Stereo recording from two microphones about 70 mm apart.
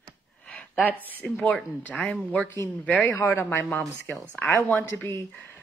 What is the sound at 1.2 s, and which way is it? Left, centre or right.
Speech, centre.